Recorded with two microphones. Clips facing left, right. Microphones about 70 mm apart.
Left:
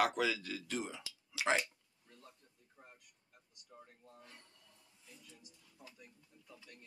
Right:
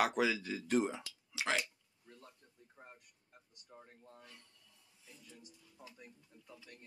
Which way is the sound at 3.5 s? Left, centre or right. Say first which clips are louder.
Right 1 dB; right.